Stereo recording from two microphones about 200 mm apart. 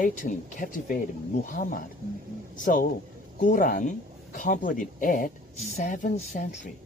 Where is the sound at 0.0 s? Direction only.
40° left (ahead or behind).